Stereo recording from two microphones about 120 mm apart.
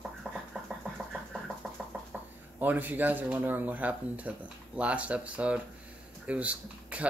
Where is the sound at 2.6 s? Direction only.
15° right (ahead or behind).